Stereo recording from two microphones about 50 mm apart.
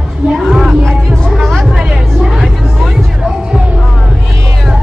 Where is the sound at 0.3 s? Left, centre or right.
Centre.